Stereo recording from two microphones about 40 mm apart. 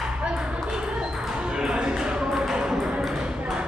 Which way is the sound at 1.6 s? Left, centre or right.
Centre.